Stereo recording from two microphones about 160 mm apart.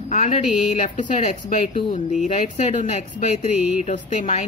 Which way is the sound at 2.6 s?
45° left (ahead or behind).